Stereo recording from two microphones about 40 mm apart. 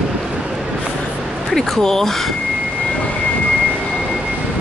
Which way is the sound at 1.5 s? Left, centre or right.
Centre.